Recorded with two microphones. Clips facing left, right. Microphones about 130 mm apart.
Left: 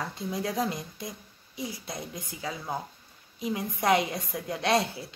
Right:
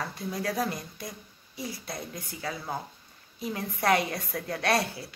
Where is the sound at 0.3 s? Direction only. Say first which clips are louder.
Left 1 dB; 20° left (ahead or behind).